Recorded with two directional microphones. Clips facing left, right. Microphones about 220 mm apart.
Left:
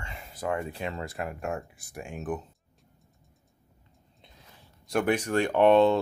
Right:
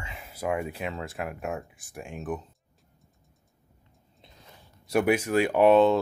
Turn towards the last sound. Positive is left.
turn(degrees=-5)  # may be behind; listen again after turning